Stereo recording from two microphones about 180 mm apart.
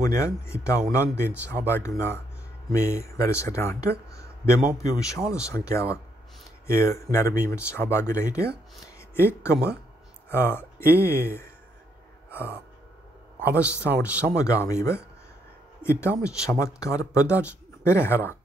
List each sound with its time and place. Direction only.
0.0 s speech: 15° left (ahead or behind)
0.8 s speech: 10° right (ahead or behind)
1.7 s speech: 15° left (ahead or behind)
4.1 s a sound: 15° left (ahead or behind)
4.7 s speech: 15° left (ahead or behind)
12.3 s gasp: 15° left (ahead or behind)
14.3 s speech: 15° left (ahead or behind)